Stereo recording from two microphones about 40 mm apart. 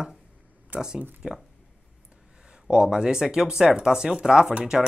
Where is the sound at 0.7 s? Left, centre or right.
Right.